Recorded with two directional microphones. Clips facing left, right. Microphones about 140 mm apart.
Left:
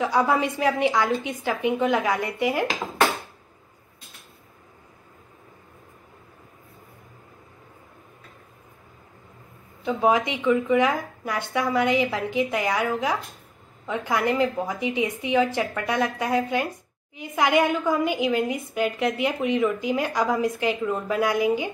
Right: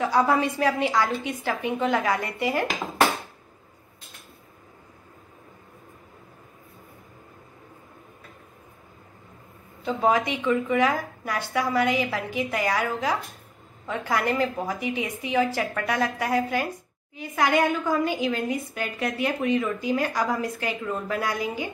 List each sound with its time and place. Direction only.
0.0 s a woman's voice: 20° left (ahead or behind)
2.6 s dishes: centre (ahead or behind)
9.9 s a woman's voice: 20° left (ahead or behind)